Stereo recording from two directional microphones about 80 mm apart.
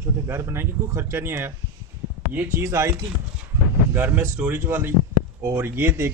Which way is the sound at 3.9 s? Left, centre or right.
Right.